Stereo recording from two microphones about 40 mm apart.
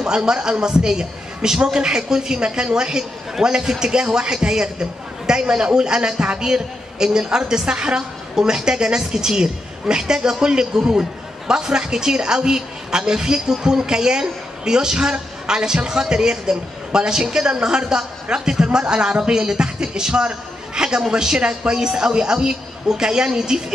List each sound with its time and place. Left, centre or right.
0.0 s a man's voice: centre